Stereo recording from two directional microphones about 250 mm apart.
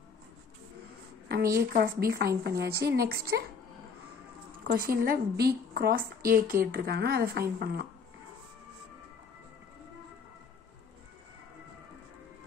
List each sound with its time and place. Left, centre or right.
1.6 s a woman's voice: right
4.6 s a woman's voice: right